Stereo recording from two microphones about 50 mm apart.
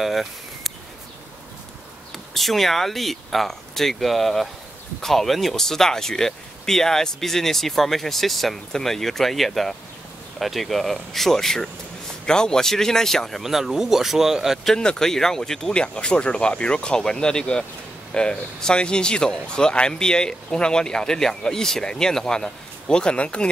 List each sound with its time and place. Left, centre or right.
0.0 s a sound: centre
2.1 s speech: centre
13.4 s speech: centre
14.6 s speech: centre
15.7 s speech: left